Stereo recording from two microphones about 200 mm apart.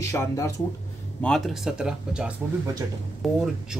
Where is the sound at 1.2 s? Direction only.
Centre (ahead or behind).